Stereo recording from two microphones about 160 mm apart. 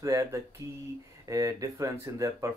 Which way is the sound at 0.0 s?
20° right (ahead or behind).